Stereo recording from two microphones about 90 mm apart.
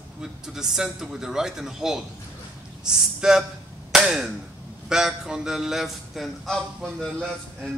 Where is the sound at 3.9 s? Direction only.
5° right (ahead or behind).